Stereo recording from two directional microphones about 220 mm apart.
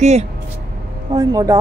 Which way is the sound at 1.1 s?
15° right (ahead or behind).